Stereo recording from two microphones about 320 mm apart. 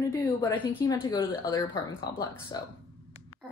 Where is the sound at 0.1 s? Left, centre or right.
Centre.